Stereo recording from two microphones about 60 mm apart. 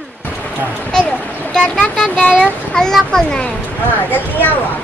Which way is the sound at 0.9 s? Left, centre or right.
Left.